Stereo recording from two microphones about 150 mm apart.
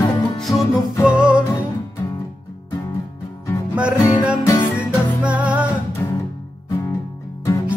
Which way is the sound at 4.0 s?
15° left (ahead or behind).